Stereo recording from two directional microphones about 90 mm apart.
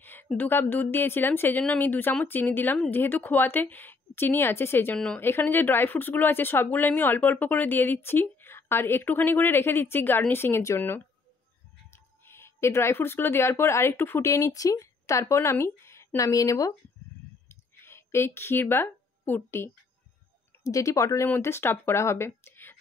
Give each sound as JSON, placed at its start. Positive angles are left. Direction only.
{"t": 0.0, "sound": "a sound", "side_deg": 20}
{"t": 0.4, "sound": "speech", "side_deg": 25}
{"t": 4.9, "sound": "speech", "side_deg": 10}
{"t": 5.2, "sound": "speech", "side_deg": 25}
{"t": 11.9, "sound": "speech", "side_deg": 25}
{"t": 17.5, "sound": "a sound", "side_deg": 30}
{"t": 20.6, "sound": "speech", "side_deg": 35}